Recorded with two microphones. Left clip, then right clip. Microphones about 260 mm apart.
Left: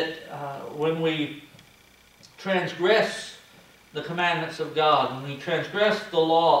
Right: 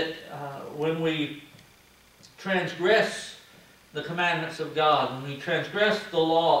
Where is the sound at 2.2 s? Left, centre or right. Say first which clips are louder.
Left 2 dB; centre.